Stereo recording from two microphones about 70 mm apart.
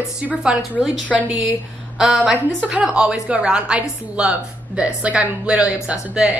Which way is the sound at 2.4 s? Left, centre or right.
Centre.